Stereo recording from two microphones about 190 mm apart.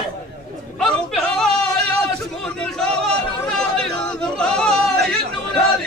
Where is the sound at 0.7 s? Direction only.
Centre (ahead or behind).